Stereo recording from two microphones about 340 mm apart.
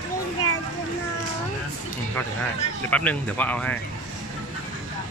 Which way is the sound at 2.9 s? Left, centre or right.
Centre.